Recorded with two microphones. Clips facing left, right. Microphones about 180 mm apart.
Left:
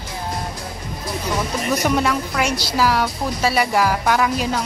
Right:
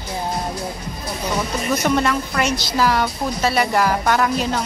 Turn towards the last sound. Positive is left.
turn(degrees=5)  # may be behind; listen again after turning